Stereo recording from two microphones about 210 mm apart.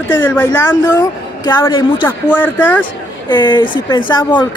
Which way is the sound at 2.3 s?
10° left (ahead or behind).